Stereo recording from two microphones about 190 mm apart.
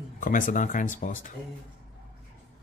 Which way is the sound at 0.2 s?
45° left (ahead or behind).